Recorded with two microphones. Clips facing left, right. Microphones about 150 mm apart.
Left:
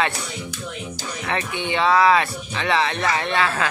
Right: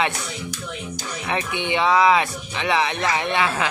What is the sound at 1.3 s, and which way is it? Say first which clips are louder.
Speech: right 1 dB; 15° right (ahead or behind).